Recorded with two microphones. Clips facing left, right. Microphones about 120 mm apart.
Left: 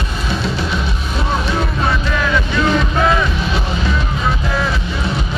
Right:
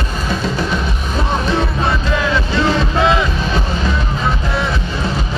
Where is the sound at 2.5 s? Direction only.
25° right (ahead or behind).